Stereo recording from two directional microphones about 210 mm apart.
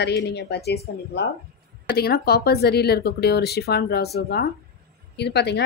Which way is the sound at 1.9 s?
50° left (ahead or behind).